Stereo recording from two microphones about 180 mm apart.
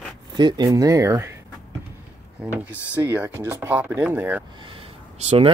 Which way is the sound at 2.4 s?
5° right (ahead or behind).